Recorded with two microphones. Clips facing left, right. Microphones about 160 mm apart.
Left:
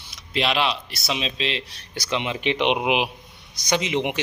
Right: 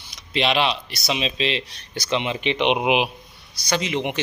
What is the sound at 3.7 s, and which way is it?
Speech, 20° left (ahead or behind).